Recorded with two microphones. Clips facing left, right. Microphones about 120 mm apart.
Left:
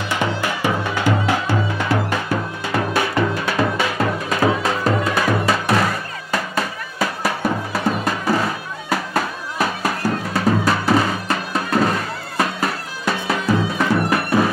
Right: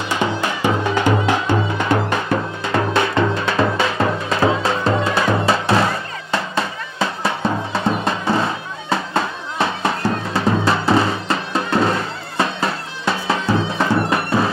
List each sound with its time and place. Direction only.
0.1 s music: 20° right (ahead or behind)